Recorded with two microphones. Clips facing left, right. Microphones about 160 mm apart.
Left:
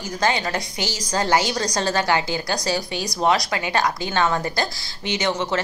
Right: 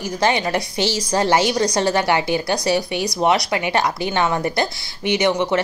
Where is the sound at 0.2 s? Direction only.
20° right (ahead or behind).